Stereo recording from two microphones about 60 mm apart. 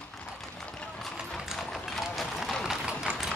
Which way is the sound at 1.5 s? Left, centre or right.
Centre.